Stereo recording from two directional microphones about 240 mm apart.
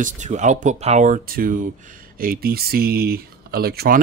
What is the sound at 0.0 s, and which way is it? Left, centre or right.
Speech, right.